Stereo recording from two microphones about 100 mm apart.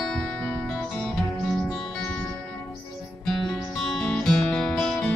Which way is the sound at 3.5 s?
5° left (ahead or behind).